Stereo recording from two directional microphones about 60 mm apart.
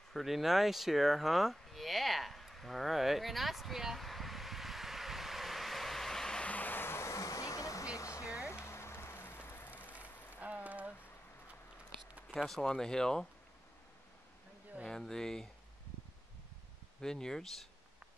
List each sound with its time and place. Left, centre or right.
0.1 s a sound: centre
6.5 s vehicle: left
7.2 s music: left
8.5 s rain on surface: left
10.3 s a sound: right
12.4 s speech: centre
14.9 s speech: centre
17.0 s speech: centre